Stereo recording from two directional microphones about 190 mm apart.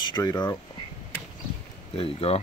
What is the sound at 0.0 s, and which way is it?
Speech, 20° left (ahead or behind).